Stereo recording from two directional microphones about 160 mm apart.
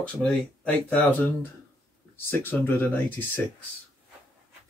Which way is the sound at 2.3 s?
15° left (ahead or behind).